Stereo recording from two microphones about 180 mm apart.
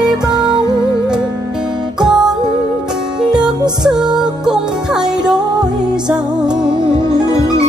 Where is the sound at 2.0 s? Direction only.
5° right (ahead or behind).